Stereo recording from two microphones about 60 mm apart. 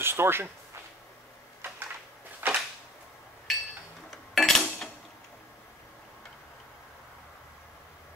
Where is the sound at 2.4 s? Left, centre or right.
Right.